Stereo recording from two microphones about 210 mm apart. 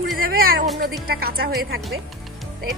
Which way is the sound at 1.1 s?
45° right (ahead or behind).